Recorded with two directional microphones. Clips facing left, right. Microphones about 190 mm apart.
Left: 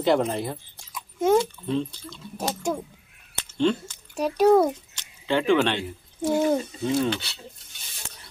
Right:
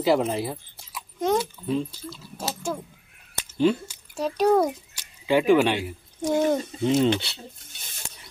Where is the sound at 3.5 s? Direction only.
10° right (ahead or behind).